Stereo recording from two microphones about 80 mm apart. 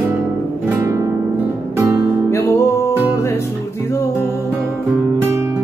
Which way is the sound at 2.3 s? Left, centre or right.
Left.